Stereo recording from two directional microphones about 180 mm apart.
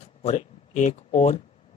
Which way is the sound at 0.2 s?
40° left (ahead or behind).